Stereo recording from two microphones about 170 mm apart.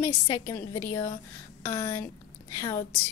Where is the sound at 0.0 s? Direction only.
20° left (ahead or behind).